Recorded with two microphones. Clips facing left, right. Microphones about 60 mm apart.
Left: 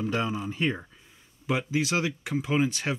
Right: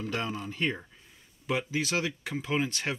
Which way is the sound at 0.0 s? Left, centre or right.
Centre.